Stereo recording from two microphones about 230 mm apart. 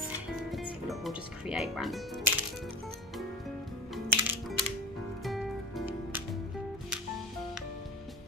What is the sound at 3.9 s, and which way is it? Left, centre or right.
Music, centre.